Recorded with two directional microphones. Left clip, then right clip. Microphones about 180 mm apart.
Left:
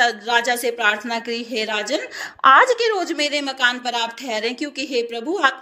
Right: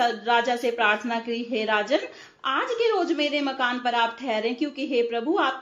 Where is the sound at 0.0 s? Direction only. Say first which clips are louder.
Left 4 dB; 50° left (ahead or behind).